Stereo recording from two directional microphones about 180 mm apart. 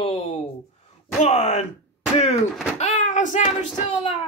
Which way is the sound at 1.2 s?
40° left (ahead or behind).